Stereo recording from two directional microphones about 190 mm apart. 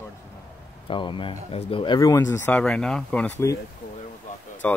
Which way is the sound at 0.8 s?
25° left (ahead or behind).